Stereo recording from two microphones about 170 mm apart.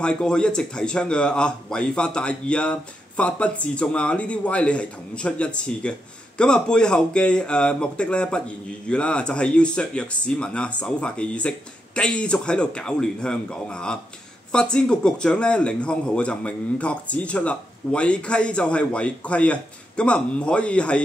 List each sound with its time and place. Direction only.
0.0 s a man's voice: 5° left (ahead or behind)